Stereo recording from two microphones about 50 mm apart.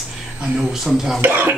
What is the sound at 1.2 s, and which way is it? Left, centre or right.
Speech, right.